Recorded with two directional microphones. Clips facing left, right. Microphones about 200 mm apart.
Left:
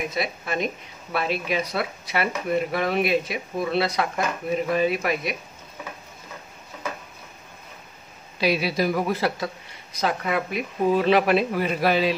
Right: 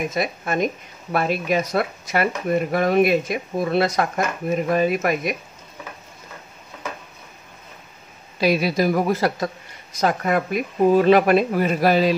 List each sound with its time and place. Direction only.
0.1 s speech: 45° right (ahead or behind)
8.4 s speech: 45° right (ahead or behind)